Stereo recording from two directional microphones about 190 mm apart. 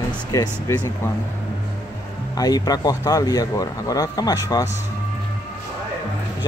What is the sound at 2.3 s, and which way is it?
Speech, 20° left (ahead or behind).